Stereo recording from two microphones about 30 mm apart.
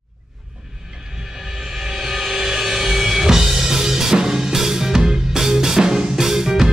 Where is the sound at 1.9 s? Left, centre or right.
Centre.